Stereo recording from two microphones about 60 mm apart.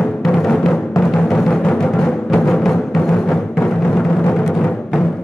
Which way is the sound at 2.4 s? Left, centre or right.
Centre.